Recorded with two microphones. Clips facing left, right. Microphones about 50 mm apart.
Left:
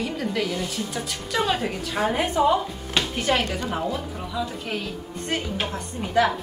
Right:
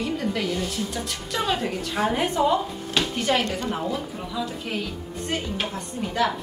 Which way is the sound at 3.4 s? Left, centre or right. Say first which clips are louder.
Even; centre.